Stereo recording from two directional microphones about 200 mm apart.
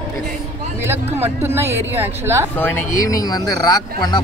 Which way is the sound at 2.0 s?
15° right (ahead or behind).